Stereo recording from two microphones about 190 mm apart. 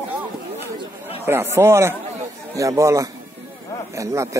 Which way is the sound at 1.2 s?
10° right (ahead or behind).